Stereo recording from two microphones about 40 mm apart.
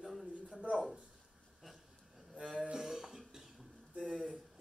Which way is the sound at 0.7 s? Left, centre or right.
Right.